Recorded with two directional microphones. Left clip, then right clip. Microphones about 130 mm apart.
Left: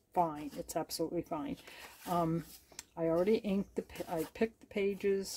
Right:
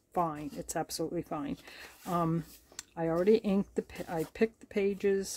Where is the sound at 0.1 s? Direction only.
40° right (ahead or behind).